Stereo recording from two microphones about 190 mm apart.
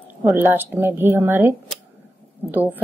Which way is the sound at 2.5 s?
10° right (ahead or behind).